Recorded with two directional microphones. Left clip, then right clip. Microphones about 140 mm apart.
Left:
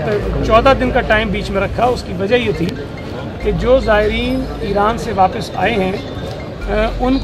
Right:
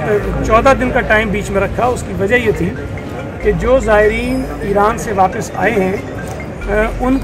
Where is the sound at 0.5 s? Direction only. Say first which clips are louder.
Even; 25° left (ahead or behind).